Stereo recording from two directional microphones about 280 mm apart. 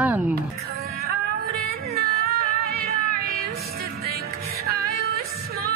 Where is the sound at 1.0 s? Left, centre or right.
Right.